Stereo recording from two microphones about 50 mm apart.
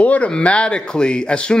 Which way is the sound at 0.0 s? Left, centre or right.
Left.